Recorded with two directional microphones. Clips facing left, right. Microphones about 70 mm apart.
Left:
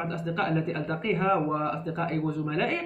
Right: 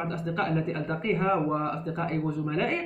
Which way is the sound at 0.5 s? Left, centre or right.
Right.